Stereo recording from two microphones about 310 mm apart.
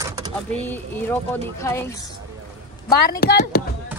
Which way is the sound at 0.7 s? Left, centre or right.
Centre.